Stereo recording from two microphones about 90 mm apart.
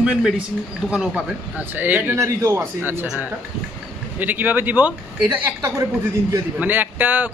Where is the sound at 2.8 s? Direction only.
20° right (ahead or behind).